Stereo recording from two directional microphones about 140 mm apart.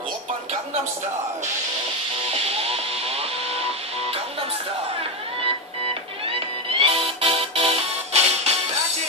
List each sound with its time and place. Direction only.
2.7 s printer: 45° right (ahead or behind)
6.2 s music: 40° right (ahead or behind)